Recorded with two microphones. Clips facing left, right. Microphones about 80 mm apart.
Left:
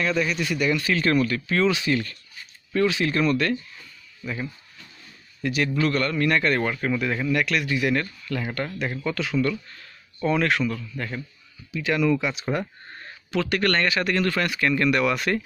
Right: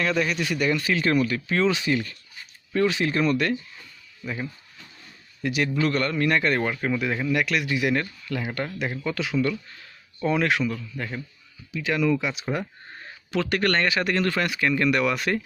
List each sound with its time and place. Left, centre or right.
0.0 s speech: right
0.6 s speech: right
0.8 s a man's voice: centre
1.5 s a man's voice: right; by 11.1 s centre
11.7 s speech: centre
12.5 s a sound: centre
13.3 s speech: right
14.4 s speech: centre